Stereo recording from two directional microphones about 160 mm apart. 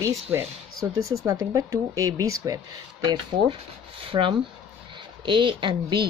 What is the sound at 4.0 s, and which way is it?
Speech, 35° right (ahead or behind).